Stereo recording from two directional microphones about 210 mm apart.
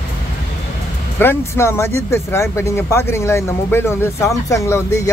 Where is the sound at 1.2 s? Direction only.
10° left (ahead or behind).